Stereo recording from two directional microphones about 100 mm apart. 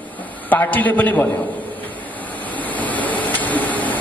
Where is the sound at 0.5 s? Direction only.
15° left (ahead or behind).